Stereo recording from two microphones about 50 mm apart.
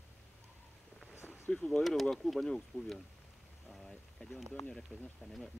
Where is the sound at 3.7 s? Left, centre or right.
Centre.